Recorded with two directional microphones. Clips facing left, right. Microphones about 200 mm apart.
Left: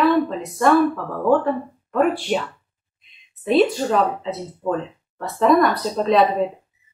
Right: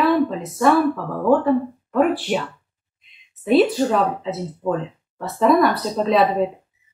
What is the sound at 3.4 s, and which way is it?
Speech, centre (ahead or behind).